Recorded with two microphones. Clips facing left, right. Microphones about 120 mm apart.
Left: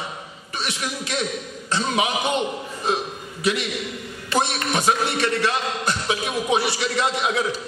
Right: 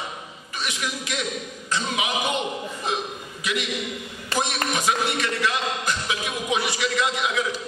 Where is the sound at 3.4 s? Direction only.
35° left (ahead or behind).